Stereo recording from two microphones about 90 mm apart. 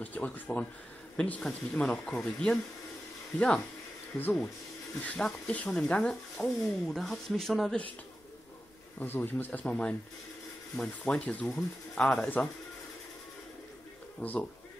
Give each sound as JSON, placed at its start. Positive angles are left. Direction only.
{"t": 0.0, "sound": "speech", "side_deg": 15}
{"t": 9.0, "sound": "speech", "side_deg": 20}
{"t": 14.2, "sound": "speech", "side_deg": 15}